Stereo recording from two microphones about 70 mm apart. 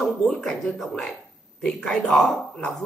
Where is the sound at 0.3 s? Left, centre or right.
Centre.